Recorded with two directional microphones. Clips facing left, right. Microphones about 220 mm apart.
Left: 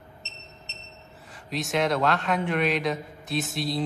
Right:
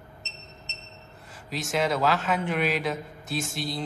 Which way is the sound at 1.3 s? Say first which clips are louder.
Left 2 dB; centre (ahead or behind).